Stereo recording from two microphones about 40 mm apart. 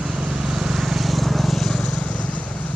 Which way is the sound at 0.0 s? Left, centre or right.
Centre.